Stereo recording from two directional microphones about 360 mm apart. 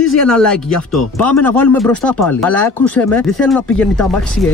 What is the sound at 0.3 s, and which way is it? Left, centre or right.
Speech, centre.